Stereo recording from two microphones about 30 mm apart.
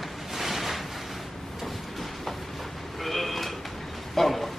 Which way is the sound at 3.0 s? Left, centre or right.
Centre.